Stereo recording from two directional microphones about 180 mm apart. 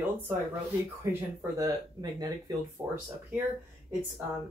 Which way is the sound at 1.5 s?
20° right (ahead or behind).